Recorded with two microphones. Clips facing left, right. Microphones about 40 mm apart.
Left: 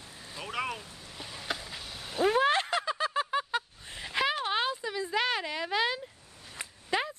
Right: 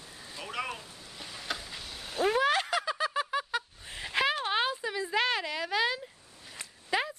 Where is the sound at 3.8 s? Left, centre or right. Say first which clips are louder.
Right 2 dB; centre.